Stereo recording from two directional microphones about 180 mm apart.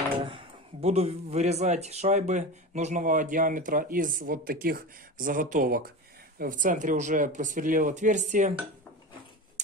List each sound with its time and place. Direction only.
0.2 s speech: 30° right (ahead or behind)